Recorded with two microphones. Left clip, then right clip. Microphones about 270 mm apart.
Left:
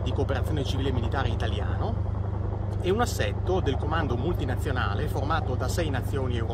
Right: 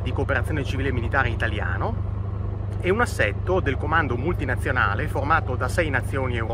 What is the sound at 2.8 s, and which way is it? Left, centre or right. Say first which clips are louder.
Speech: right 5 dB; centre.